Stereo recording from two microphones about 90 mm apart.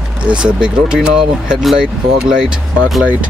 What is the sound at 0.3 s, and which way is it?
Speech, 10° right (ahead or behind).